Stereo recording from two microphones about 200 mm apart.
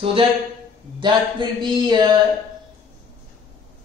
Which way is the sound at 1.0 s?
25° right (ahead or behind).